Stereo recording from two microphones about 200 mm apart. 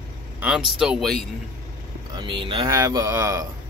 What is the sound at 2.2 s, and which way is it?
Speech, 25° right (ahead or behind).